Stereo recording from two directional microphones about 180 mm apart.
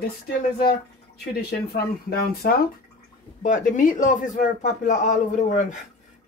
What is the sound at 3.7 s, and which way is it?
Speech, 45° left (ahead or behind).